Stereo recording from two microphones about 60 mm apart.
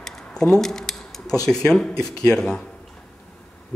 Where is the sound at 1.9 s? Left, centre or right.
Left.